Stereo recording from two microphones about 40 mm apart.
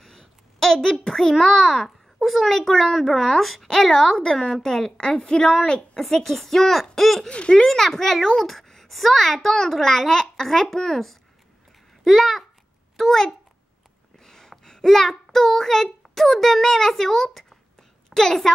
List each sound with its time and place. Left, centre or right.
0.0 s a sound: centre
1.4 s a child's voice: centre
3.3 s a child's voice: centre
3.6 s a child's voice: centre
7.2 s a woman's voice: left
7.6 s a child's voice: centre